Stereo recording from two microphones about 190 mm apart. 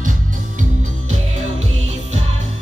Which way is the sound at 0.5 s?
40° right (ahead or behind).